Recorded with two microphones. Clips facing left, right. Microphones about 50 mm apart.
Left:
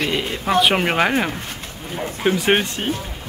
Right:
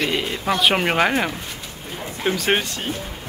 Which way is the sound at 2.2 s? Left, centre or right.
Centre.